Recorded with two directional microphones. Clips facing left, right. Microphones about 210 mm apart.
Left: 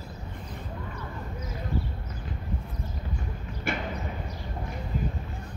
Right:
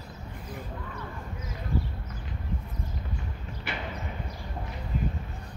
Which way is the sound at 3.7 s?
45° left (ahead or behind).